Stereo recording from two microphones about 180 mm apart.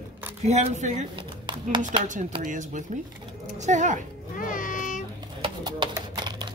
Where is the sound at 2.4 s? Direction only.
45° right (ahead or behind).